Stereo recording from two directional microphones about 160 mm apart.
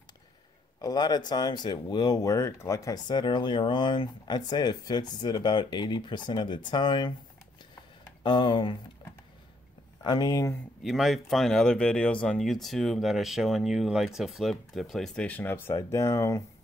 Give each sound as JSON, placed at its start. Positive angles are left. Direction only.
{"t": 0.7, "sound": "a man's voice", "side_deg": 25}
{"t": 8.2, "sound": "speech", "side_deg": 30}
{"t": 10.0, "sound": "speech", "side_deg": 25}
{"t": 10.8, "sound": "speech", "side_deg": 0}